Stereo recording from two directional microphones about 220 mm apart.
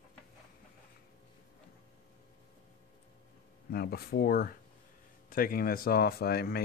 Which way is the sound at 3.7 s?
45° left (ahead or behind).